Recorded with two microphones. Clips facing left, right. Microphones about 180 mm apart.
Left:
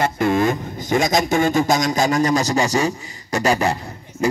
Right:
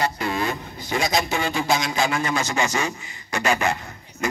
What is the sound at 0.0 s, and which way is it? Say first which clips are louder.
A man's voice: left 7 dB; 50° left (ahead or behind).